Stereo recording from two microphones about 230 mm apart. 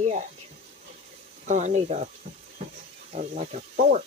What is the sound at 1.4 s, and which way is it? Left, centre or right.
Speech, right.